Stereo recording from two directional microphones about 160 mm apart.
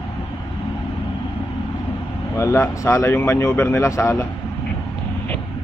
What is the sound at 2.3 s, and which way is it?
Speech, 15° left (ahead or behind).